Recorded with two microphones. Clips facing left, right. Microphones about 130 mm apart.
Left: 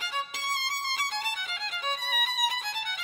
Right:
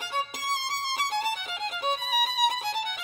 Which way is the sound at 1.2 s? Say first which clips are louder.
Right 5 dB; 40° right (ahead or behind).